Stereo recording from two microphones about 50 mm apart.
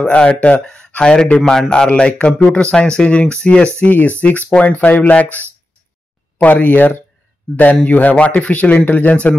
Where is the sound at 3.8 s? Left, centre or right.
Left.